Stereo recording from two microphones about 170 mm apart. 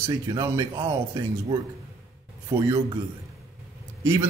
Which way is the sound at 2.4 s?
25° right (ahead or behind).